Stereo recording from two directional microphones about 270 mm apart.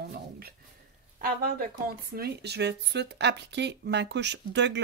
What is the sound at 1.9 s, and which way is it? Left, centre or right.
Speech, right.